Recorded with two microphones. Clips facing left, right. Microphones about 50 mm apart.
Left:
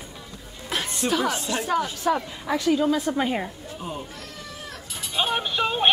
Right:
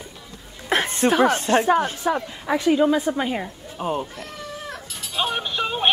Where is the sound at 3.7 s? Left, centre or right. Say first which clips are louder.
Right 10 dB; right.